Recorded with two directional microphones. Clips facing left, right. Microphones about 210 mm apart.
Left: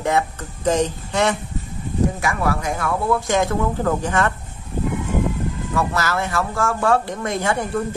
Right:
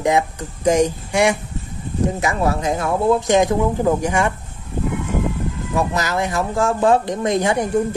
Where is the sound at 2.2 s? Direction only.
25° right (ahead or behind).